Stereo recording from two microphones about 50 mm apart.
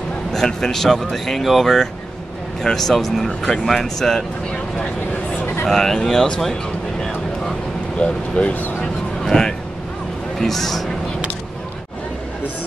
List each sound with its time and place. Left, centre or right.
0.3 s speech: centre
4.5 s a sound: left
5.7 s speech: centre
7.0 s vehicle: centre
8.0 s speech: left
9.2 s vehicle: centre
10.4 s speech: centre